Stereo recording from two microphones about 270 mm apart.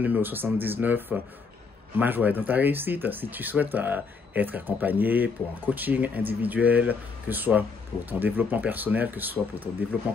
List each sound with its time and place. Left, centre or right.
0.0 s speech: centre